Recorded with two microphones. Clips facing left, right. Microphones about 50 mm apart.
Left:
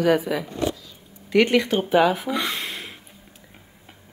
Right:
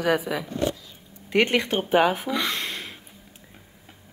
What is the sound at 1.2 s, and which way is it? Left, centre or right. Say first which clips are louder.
Speech: left 3 dB; right.